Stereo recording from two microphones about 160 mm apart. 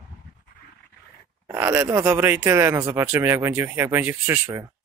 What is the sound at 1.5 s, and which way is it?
Speech, 20° right (ahead or behind).